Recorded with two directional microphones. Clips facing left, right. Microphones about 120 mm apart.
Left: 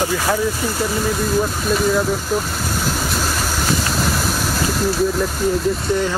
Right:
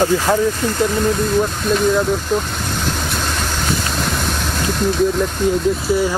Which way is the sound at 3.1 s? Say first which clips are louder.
Even; 5° left (ahead or behind).